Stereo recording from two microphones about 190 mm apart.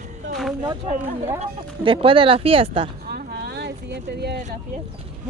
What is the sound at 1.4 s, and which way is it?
Speech, 30° right (ahead or behind).